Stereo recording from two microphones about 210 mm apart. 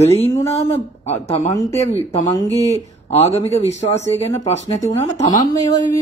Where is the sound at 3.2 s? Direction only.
30° left (ahead or behind).